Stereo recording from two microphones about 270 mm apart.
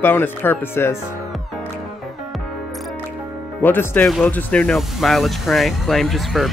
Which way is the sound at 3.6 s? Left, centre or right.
Centre.